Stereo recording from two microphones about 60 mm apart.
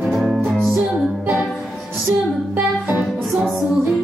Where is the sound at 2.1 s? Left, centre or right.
Right.